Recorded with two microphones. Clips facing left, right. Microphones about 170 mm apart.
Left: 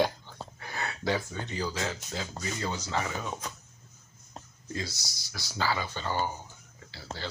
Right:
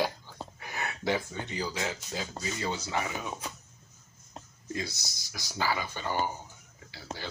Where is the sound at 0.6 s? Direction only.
15° right (ahead or behind).